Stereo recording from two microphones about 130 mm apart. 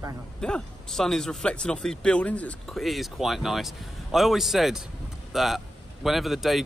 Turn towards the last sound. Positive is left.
turn(degrees=0)  # may be behind; listen again after turning